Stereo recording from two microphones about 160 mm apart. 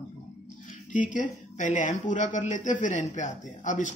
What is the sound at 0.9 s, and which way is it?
Speech, 50° left (ahead or behind).